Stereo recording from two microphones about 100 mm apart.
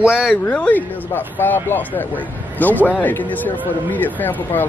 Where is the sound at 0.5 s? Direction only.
15° left (ahead or behind).